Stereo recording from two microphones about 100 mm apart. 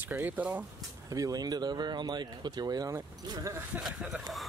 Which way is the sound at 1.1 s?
40° right (ahead or behind).